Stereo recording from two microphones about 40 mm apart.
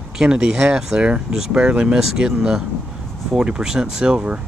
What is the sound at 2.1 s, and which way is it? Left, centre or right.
Speech, centre.